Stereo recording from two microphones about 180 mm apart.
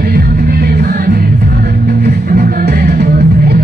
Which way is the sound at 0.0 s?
60° right (ahead or behind).